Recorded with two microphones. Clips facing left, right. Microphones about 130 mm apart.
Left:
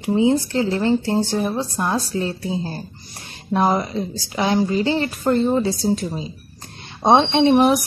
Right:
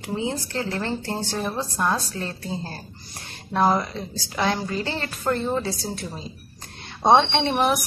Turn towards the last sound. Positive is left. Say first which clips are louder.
# left 7 dB
turn(degrees=20)  # may be behind; listen again after turning